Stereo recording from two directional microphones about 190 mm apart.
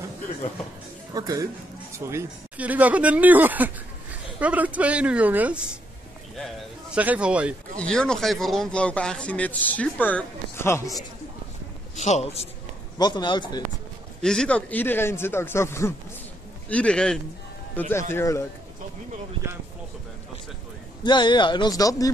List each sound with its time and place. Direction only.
1.1 s speech: 20° right (ahead or behind)
7.0 s speech: 5° right (ahead or behind)
7.7 s speech: 5° left (ahead or behind)
12.0 s a man's voice: 35° left (ahead or behind)
13.0 s speech: 25° left (ahead or behind)
14.2 s a man's voice: 5° left (ahead or behind)
21.0 s speech: 25° left (ahead or behind)